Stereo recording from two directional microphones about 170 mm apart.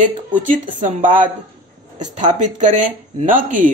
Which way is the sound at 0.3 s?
50° right (ahead or behind).